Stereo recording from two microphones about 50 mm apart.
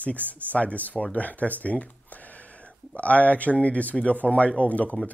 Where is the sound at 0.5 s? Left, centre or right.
Left.